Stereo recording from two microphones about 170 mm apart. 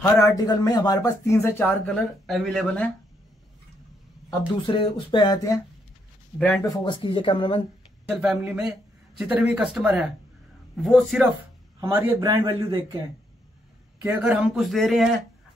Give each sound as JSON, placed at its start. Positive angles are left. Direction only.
{"t": 0.0, "sound": "speech", "side_deg": 20}
{"t": 4.6, "sound": "speech", "side_deg": 30}
{"t": 6.3, "sound": "speech", "side_deg": 5}
{"t": 6.6, "sound": "speech", "side_deg": 25}
{"t": 8.1, "sound": "speech", "side_deg": -5}
{"t": 11.8, "sound": "speech", "side_deg": -10}
{"t": 14.2, "sound": "speech", "side_deg": -5}